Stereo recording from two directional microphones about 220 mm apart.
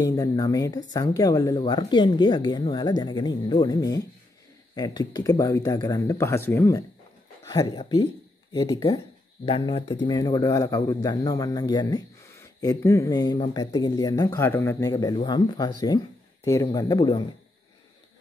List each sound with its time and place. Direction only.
0.0 s a man's voice: 15° left (ahead or behind)